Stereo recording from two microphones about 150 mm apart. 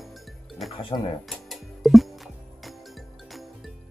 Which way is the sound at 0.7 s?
35° left (ahead or behind).